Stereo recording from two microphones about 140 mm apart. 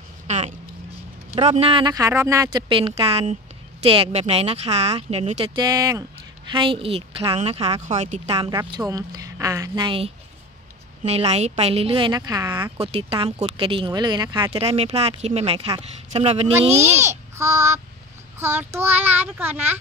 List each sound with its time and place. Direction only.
1.3 s speech: 50° right (ahead or behind)
1.9 s speech: 20° right (ahead or behind)
2.7 s speech: 40° right (ahead or behind)
6.5 s speech: 35° right (ahead or behind)
8.5 s speech: 30° right (ahead or behind)
9.8 s speech: 40° right (ahead or behind)
12.1 s speech: 30° right (ahead or behind)
12.7 s speech: 45° right (ahead or behind)
16.8 s a child's voice: 20° right (ahead or behind)